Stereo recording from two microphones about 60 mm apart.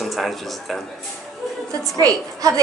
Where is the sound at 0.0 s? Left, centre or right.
Centre.